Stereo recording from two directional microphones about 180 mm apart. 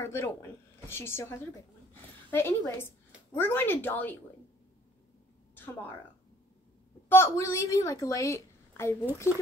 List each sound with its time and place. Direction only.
0.0 s speech: 15° left (ahead or behind)
5.5 s a sound: 10° left (ahead or behind)
7.1 s a woman's voice: 15° left (ahead or behind)